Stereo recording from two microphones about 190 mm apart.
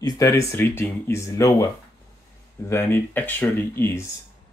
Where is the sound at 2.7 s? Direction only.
10° left (ahead or behind).